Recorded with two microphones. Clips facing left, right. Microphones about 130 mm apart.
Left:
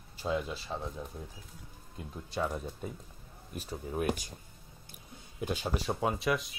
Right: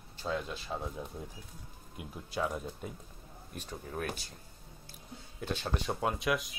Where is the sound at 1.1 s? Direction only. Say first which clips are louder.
Right 1 dB; 15° right (ahead or behind).